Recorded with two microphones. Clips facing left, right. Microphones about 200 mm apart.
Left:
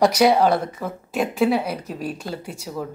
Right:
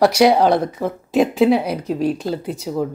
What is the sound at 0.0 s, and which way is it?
A woman's voice, 10° right (ahead or behind).